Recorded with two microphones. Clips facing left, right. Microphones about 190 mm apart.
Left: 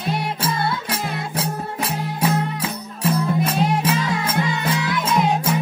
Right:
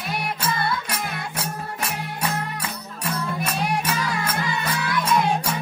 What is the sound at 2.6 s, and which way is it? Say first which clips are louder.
Music: left 7 dB; 25° left (ahead or behind).